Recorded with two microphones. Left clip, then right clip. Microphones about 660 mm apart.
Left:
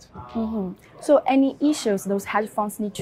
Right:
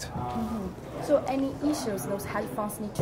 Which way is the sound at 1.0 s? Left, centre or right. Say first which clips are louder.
Left 8 dB; left.